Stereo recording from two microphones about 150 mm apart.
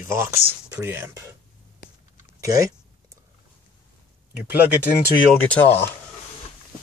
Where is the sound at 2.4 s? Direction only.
20° right (ahead or behind).